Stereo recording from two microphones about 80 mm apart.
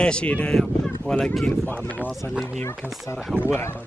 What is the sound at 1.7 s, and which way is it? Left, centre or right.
Speech, left.